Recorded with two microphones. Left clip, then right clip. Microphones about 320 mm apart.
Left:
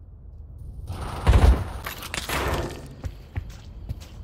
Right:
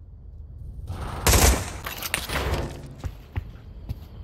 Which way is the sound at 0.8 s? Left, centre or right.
Centre.